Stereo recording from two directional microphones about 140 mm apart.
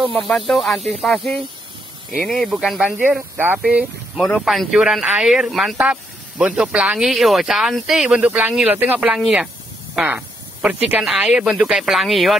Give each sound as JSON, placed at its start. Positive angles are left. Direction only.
{"t": 0.3, "sound": "speech", "side_deg": 0}